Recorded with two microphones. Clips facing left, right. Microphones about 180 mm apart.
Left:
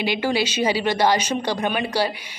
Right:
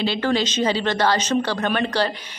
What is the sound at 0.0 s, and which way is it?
A woman's voice, 10° left (ahead or behind).